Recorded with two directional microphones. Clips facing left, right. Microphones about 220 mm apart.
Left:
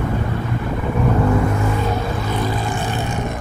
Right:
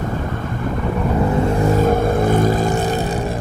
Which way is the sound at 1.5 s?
40° right (ahead or behind).